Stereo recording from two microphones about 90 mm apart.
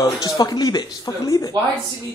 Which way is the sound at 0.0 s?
45° left (ahead or behind).